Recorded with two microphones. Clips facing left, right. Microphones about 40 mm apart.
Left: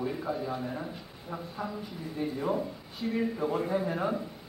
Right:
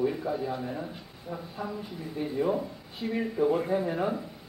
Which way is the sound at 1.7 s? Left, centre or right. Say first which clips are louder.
Right 1 dB; centre.